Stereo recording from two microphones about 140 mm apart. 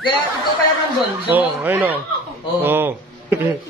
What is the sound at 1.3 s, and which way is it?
Speech, 10° right (ahead or behind).